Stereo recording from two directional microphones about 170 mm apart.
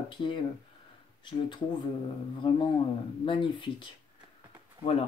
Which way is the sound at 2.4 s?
30° left (ahead or behind).